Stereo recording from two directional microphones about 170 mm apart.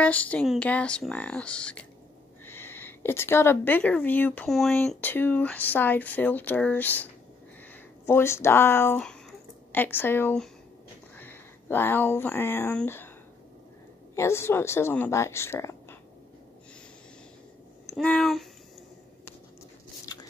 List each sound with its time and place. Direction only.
0.0 s speech: 10° left (ahead or behind)
4.7 s speech: 10° left (ahead or behind)
14.1 s speech: 15° left (ahead or behind)
17.8 s speech: centre (ahead or behind)
20.1 s biting: 20° left (ahead or behind)